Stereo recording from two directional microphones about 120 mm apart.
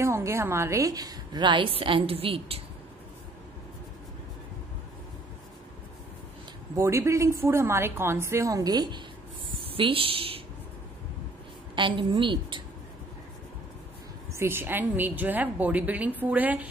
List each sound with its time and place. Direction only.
0.0 s a woman's voice: 25° right (ahead or behind); by 2.6 s 50° right (ahead or behind)
6.8 s a woman's voice: 25° right (ahead or behind)
9.5 s a sound: 50° right (ahead or behind)
11.7 s a woman's voice: 40° right (ahead or behind)
14.3 s a woman's voice: 20° right (ahead or behind)